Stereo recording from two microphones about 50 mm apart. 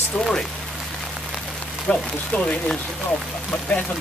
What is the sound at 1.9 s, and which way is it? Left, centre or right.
Speech, centre.